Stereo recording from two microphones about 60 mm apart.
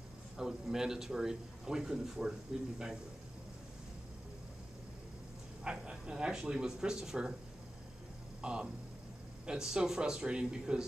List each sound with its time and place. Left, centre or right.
0.4 s a man's voice: centre
5.6 s a man's voice: centre
8.4 s a man's voice: centre